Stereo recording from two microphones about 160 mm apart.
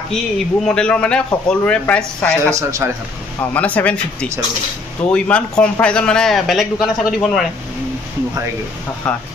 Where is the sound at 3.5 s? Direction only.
10° left (ahead or behind).